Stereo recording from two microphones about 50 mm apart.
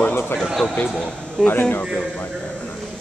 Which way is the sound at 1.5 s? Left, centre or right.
Left.